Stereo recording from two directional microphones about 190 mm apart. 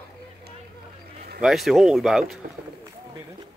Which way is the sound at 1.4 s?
Centre (ahead or behind).